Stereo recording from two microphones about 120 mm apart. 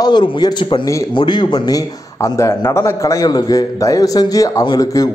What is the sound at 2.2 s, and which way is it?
A man's voice, 25° left (ahead or behind).